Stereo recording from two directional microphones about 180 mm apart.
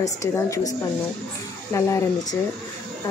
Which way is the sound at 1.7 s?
15° left (ahead or behind).